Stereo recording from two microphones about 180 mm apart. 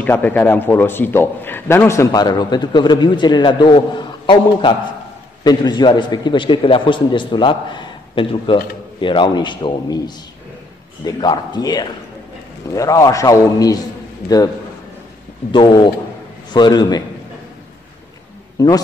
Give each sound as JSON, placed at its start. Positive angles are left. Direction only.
{"t": 0.0, "sound": "a man's voice", "side_deg": 10}
{"t": 15.5, "sound": "a man's voice", "side_deg": 25}
{"t": 18.6, "sound": "a man's voice", "side_deg": 20}